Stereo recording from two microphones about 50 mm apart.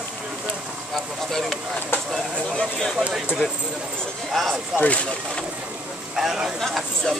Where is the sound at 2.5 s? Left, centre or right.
Centre.